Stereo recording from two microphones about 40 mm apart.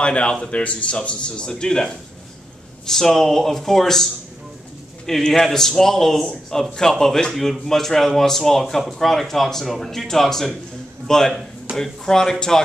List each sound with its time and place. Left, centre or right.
0.0 s a man's voice: left
11.7 s speech: right
12.1 s speech: centre